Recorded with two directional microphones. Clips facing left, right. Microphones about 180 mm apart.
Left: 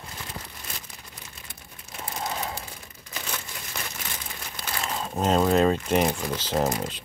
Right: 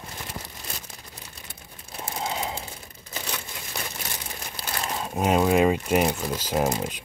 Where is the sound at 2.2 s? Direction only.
20° right (ahead or behind).